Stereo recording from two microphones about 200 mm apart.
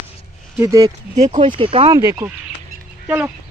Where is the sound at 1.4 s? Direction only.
25° right (ahead or behind).